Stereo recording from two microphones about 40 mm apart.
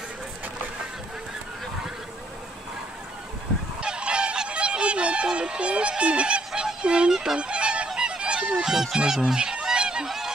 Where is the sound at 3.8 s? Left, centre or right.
Right.